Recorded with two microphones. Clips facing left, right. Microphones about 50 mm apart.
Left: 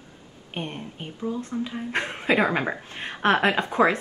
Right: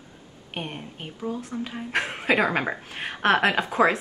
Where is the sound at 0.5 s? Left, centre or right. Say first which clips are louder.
Left 1 dB; centre.